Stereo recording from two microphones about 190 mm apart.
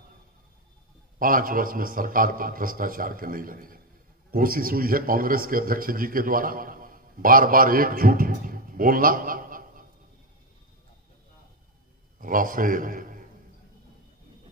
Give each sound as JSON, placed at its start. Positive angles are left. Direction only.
{"t": 1.2, "sound": "a man's voice", "side_deg": -45}
{"t": 12.2, "sound": "a man's voice", "side_deg": -45}